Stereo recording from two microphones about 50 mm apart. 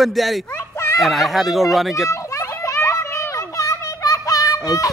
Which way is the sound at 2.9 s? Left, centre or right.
Left.